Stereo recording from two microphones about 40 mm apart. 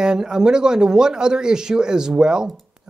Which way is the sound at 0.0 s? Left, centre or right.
Centre.